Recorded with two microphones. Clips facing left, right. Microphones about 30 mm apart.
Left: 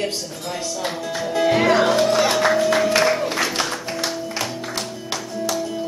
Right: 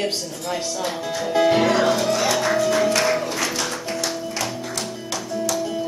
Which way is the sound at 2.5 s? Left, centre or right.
Left.